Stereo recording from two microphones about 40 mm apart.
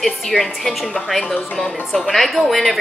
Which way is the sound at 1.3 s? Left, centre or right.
Left.